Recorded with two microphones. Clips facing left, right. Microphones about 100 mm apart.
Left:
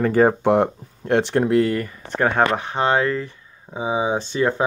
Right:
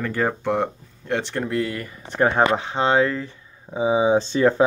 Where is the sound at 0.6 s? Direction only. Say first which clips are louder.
Left 4 dB; 55° left (ahead or behind).